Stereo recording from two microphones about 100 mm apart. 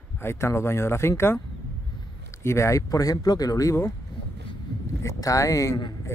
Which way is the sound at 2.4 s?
30° left (ahead or behind).